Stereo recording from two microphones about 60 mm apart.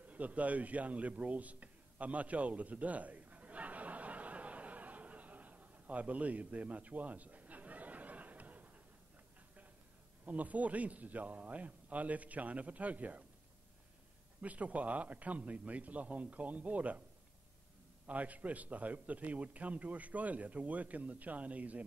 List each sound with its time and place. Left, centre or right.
0.0 s a sound: right
10.2 s a man's voice: right
14.4 s a man's voice: right
18.0 s a man's voice: right